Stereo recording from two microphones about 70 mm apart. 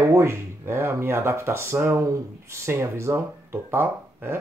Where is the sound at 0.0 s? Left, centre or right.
Right.